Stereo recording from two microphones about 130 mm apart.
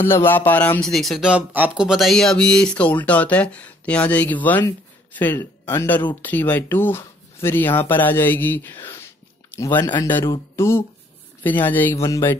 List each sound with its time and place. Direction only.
0.0 s speech: 15° left (ahead or behind); by 1.9 s 10° right (ahead or behind)
1.9 s speech: centre (ahead or behind); by 12.4 s 25° left (ahead or behind)